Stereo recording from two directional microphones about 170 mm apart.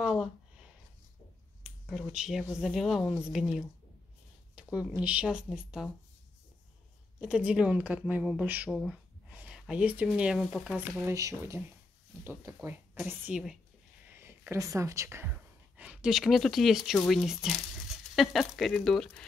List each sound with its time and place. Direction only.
0.0 s a sound: 5° right (ahead or behind)
1.6 s speech: centre (ahead or behind)
7.2 s speech: 5° right (ahead or behind)
11.1 s speech: 20° right (ahead or behind)
12.5 s speech: 5° right (ahead or behind)